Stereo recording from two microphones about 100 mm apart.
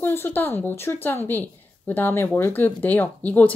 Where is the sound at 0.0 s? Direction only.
20° left (ahead or behind).